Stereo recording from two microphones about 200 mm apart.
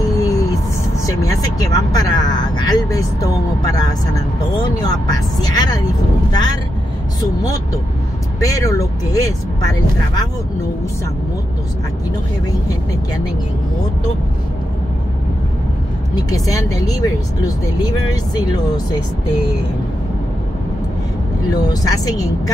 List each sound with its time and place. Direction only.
0.2 s a sound: 15° left (ahead or behind)
1.0 s speech: 20° left (ahead or behind)
16.2 s speech: 20° left (ahead or behind)
21.5 s speech: 20° left (ahead or behind)